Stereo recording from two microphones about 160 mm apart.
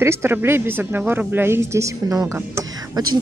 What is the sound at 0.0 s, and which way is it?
Speech, 15° right (ahead or behind).